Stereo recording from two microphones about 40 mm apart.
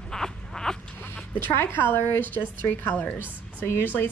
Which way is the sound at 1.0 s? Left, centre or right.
Left.